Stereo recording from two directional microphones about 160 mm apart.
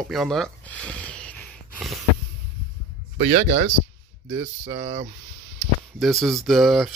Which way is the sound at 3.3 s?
45° right (ahead or behind).